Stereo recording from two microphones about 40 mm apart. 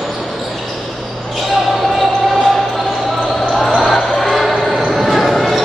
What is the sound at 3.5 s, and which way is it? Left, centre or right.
Basketball bounce, centre.